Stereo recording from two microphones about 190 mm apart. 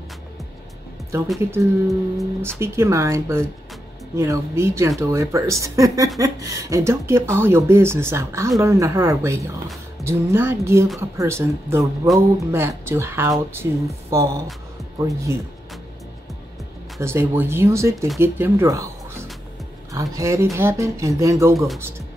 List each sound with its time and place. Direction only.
1.4 s speech: 15° right (ahead or behind)
1.9 s humming: centre (ahead or behind)
2.6 s speech: 15° right (ahead or behind)
17.0 s speech: 15° right (ahead or behind)